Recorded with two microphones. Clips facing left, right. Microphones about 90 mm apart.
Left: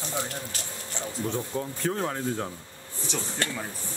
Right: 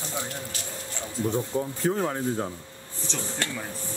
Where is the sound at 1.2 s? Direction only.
15° right (ahead or behind).